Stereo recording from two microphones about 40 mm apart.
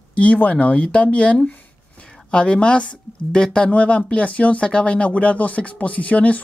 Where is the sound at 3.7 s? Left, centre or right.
Left.